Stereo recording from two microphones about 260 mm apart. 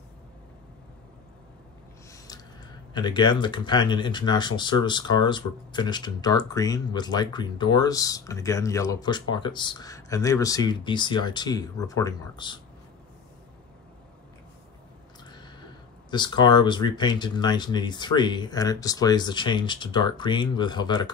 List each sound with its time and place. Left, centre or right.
2.9 s speech: centre
15.3 s speech: centre